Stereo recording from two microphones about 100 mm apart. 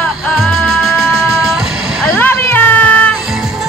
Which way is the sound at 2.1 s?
20° left (ahead or behind).